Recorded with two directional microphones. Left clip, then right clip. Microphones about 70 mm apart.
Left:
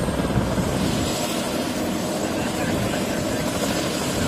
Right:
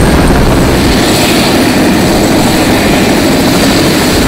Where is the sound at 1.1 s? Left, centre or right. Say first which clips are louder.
Right 17 dB; right.